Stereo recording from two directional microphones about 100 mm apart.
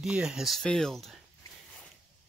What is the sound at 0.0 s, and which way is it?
Speech, 5° right (ahead or behind).